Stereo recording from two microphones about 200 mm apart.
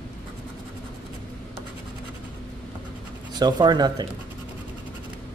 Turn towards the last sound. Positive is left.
turn(degrees=-20)  # may be behind; listen again after turning